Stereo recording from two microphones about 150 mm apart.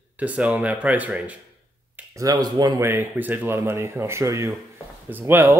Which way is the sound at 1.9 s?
20° right (ahead or behind).